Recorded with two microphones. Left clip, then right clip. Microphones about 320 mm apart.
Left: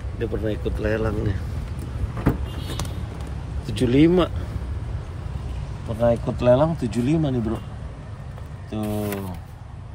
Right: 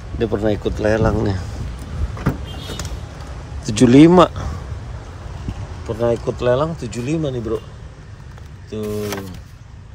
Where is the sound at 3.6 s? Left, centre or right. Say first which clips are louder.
Right 8 dB; right.